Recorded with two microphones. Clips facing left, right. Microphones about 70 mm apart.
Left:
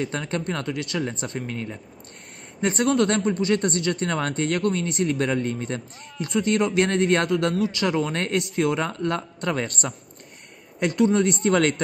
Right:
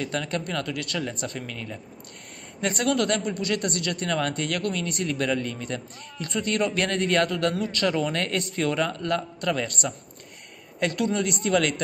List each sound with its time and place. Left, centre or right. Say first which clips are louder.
0.0 s speech: left 2 dB; left
6.1 s speech: left 4 dB; centre; by 9.9 s left
10.8 s speech: left 5 dB; left
11.1 s speech: left 4 dB; left